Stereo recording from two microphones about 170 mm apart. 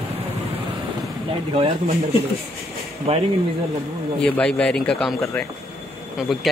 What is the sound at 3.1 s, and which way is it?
Speech, 35° right (ahead or behind).